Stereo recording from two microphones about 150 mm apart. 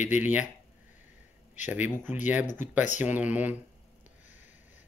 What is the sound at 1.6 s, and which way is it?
Speech, 10° right (ahead or behind).